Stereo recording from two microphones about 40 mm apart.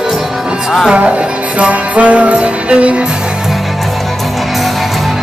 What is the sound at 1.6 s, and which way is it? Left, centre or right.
Music, right.